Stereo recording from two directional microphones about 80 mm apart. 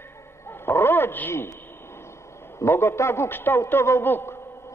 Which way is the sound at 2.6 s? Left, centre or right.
Left.